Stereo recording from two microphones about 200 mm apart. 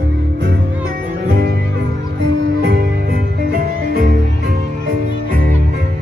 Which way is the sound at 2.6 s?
55° right (ahead or behind).